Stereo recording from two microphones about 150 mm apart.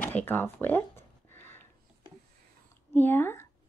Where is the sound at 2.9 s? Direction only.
15° left (ahead or behind).